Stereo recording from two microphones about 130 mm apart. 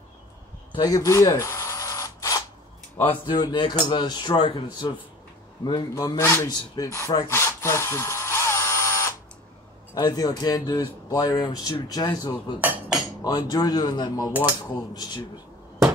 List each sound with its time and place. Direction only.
0.7 s a sound: 25° left (ahead or behind)
3.0 s a man's voice: 40° left (ahead or behind); by 6.5 s 20° left (ahead or behind)
6.7 s wood: 25° left (ahead or behind)
9.9 s speech: 30° left (ahead or behind)
12.5 s speech: 15° right (ahead or behind)
13.2 s speech: 30° left (ahead or behind)